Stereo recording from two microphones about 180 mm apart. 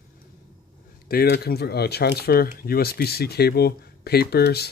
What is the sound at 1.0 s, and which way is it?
Speech, 60° left (ahead or behind).